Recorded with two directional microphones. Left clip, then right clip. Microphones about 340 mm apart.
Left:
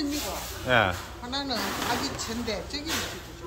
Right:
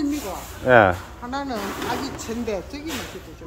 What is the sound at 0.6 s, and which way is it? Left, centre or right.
Speech, centre.